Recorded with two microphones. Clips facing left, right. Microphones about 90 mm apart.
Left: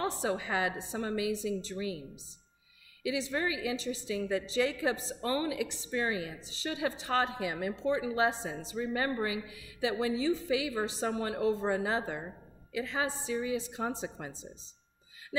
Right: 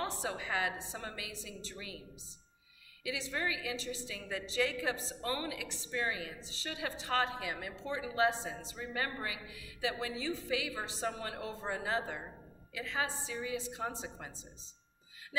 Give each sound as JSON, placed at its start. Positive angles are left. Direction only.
{"t": 0.0, "sound": "a woman's voice", "side_deg": 20}
{"t": 3.0, "sound": "a woman's voice", "side_deg": 20}